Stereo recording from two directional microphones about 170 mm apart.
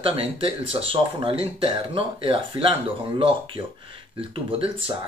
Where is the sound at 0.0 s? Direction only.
35° right (ahead or behind).